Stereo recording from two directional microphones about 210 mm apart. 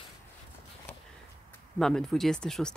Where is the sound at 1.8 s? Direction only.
Centre (ahead or behind).